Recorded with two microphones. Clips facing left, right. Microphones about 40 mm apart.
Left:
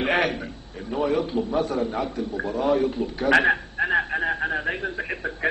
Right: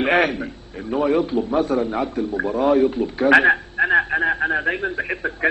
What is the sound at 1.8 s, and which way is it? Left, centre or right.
Speech, right.